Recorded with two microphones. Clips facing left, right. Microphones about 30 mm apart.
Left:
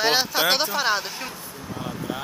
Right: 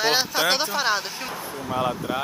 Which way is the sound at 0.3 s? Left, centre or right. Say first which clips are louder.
Left 1 dB; centre.